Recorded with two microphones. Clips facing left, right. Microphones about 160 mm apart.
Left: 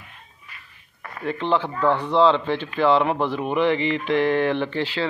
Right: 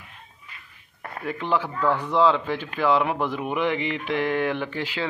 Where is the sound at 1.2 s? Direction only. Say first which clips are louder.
Left 3 dB; 10° right (ahead or behind).